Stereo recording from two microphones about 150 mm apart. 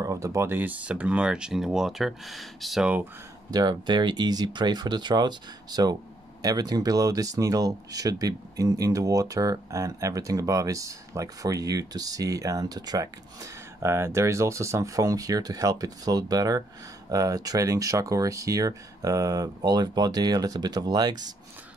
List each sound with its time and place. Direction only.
0.0 s speech: 20° right (ahead or behind)
3.4 s speech: 30° right (ahead or behind)